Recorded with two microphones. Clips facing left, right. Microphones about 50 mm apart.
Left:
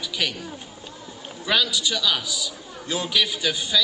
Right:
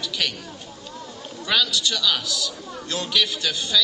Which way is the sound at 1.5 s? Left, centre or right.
Centre.